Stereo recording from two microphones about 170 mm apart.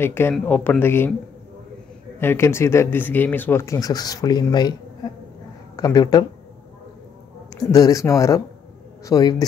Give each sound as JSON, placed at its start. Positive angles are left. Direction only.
{"t": 0.0, "sound": "speech", "side_deg": 15}
{"t": 2.1, "sound": "speech", "side_deg": 15}
{"t": 5.8, "sound": "speech", "side_deg": 20}
{"t": 7.6, "sound": "speech", "side_deg": 20}